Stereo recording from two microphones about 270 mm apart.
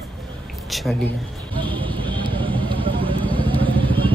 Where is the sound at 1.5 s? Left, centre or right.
Centre.